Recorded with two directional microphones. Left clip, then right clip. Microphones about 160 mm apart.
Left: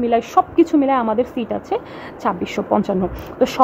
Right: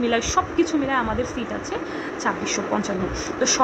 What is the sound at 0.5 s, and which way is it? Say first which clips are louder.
Speech: left 6 dB; 50° left (ahead or behind).